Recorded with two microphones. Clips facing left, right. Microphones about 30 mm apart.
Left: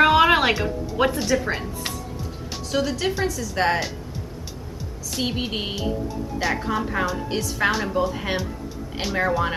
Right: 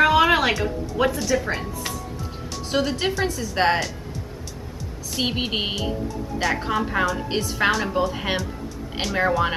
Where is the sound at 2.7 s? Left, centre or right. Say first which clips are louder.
Right 1 dB; centre.